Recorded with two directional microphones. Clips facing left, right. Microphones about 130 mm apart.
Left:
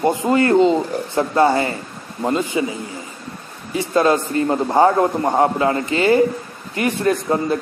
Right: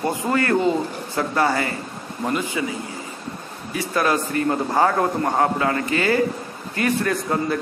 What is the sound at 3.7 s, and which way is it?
A man's voice, 25° left (ahead or behind).